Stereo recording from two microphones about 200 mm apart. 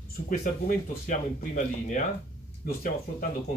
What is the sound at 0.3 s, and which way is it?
Speech, 45° left (ahead or behind).